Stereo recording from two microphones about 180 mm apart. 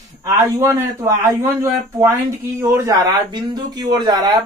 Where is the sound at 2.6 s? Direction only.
20° right (ahead or behind).